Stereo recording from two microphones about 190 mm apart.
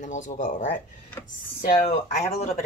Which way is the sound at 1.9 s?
35° left (ahead or behind).